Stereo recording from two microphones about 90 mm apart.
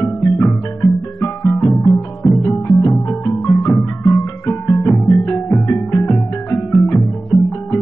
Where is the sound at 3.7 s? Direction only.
Centre (ahead or behind).